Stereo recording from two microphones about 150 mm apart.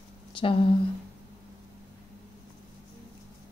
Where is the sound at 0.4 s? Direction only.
35° left (ahead or behind).